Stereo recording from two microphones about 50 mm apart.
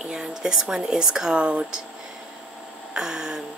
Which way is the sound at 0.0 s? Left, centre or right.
Centre.